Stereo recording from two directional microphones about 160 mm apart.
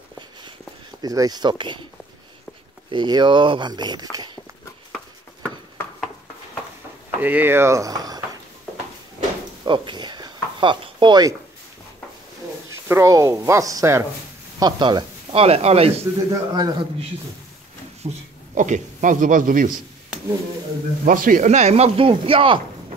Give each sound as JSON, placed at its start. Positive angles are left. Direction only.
{"t": 1.0, "sound": "speech", "side_deg": -25}
{"t": 2.9, "sound": "speech", "side_deg": -30}
{"t": 7.2, "sound": "speech", "side_deg": -10}
{"t": 9.7, "sound": "a sound", "side_deg": -30}
{"t": 12.6, "sound": "speech", "side_deg": -15}
{"t": 16.0, "sound": "speech", "side_deg": -20}
{"t": 18.0, "sound": "a man's voice", "side_deg": -50}
{"t": 21.0, "sound": "speech", "side_deg": -60}